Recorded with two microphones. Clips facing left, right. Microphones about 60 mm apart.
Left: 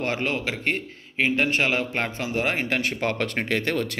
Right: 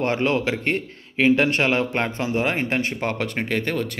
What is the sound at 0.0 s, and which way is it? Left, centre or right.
A man's voice, right.